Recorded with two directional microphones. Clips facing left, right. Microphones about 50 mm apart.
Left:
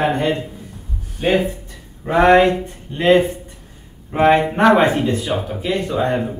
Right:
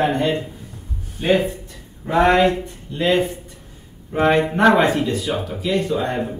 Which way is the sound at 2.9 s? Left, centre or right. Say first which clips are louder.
Left 5 dB; left.